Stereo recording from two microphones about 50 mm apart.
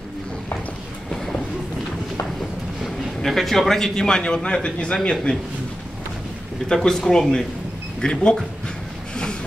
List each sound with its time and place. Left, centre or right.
2.8 s a man's voice: centre
6.7 s speech: centre
9.1 s a sound: centre